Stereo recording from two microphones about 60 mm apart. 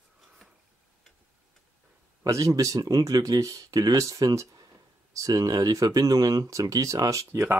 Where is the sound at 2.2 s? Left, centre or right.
Right.